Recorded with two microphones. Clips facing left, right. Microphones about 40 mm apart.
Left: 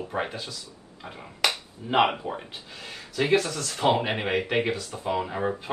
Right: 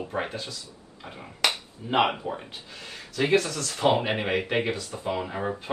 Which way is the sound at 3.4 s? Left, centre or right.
Centre.